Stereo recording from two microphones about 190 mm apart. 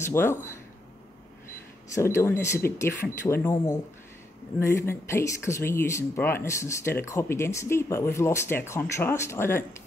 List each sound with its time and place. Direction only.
0.0 s speech: 10° left (ahead or behind)
2.0 s speech: 15° left (ahead or behind)